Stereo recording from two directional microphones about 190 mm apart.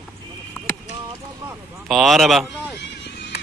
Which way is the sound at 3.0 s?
65° left (ahead or behind).